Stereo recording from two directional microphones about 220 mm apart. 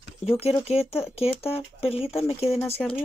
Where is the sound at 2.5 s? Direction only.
Centre (ahead or behind).